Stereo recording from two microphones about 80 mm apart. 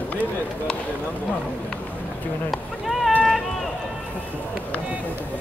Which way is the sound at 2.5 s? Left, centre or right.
Centre.